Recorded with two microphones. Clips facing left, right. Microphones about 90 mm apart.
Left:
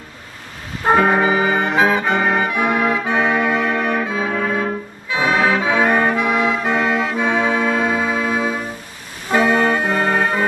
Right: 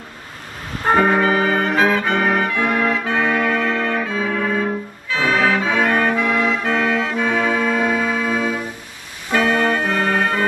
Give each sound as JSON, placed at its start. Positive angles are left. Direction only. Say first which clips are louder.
{"t": 1.1, "sound": "brass instrument", "louder": "left 1 dB", "side_deg": 15}
{"t": 5.1, "sound": "music", "louder": "left 1 dB", "side_deg": 20}
{"t": 9.3, "sound": "organ", "louder": "left 2 dB", "side_deg": 20}